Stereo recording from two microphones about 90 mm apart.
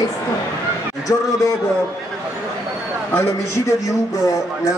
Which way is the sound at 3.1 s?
30° left (ahead or behind).